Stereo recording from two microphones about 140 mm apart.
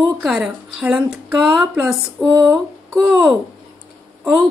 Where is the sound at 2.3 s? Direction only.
20° right (ahead or behind).